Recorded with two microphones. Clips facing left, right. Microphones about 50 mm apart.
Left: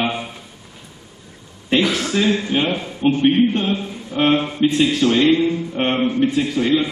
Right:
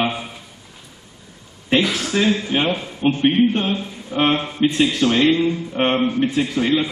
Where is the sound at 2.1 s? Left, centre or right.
Centre.